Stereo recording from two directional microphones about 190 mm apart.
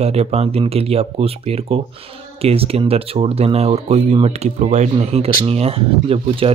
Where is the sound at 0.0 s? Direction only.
35° right (ahead or behind).